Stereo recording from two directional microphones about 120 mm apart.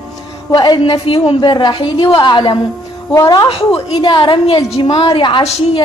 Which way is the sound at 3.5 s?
50° left (ahead or behind).